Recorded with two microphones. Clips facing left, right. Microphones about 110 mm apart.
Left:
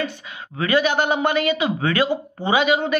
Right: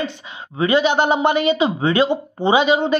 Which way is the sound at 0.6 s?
20° right (ahead or behind).